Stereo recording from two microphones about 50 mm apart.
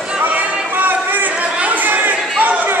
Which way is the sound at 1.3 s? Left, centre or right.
Right.